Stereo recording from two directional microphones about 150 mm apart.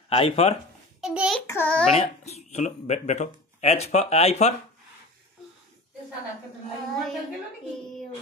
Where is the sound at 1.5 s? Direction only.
10° left (ahead or behind).